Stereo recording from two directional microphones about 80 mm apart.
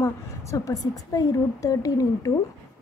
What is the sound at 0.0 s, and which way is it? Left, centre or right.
A woman's voice, left.